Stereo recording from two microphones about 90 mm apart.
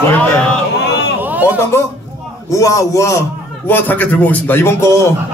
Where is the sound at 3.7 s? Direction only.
20° left (ahead or behind).